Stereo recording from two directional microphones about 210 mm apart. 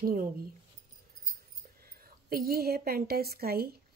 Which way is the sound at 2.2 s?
45° right (ahead or behind).